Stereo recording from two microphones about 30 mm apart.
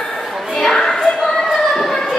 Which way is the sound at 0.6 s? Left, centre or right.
Centre.